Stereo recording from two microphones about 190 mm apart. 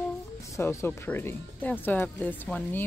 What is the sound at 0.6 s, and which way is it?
Speech, 15° left (ahead or behind).